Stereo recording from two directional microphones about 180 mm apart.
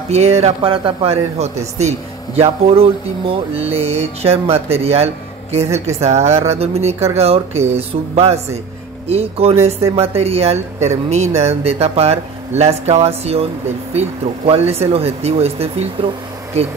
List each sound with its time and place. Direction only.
0.1 s speech: 35° right (ahead or behind)